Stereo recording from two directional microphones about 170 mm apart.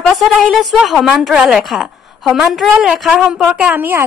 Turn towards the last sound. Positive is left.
turn(degrees=-10)  # may be behind; listen again after turning